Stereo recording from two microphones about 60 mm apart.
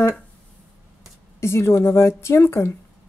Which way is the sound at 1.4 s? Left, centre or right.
Left.